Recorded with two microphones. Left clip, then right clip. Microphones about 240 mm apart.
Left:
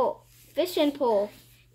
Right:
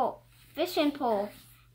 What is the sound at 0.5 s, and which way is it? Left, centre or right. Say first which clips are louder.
Speech: left 4 dB; centre.